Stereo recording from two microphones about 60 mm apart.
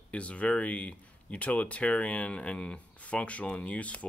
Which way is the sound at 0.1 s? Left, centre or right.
Left.